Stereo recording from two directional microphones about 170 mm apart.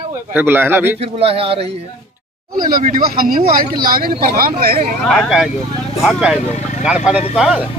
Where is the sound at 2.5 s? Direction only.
55° right (ahead or behind).